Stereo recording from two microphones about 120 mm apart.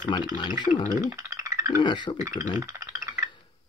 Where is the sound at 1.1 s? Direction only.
25° right (ahead or behind).